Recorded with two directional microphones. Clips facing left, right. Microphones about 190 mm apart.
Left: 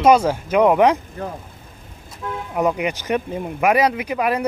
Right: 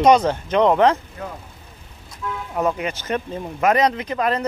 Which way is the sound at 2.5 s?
15° left (ahead or behind).